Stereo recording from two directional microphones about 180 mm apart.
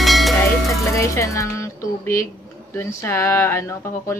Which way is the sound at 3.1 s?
15° left (ahead or behind).